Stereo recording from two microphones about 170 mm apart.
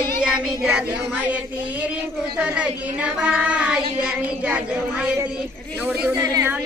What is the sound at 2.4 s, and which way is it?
Speech, 5° right (ahead or behind).